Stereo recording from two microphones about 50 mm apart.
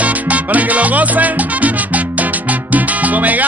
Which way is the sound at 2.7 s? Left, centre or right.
Right.